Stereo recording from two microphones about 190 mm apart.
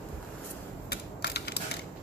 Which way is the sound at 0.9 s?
60° left (ahead or behind).